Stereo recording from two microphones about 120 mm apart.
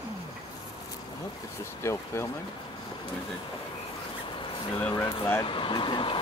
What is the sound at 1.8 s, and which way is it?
Speech, 20° left (ahead or behind).